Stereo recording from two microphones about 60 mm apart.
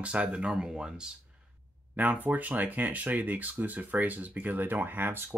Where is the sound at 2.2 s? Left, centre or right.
Right.